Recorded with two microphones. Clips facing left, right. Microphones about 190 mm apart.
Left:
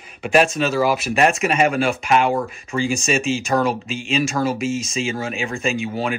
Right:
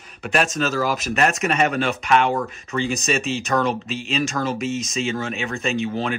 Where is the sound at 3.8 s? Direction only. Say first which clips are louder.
Left 2 dB; 35° right (ahead or behind).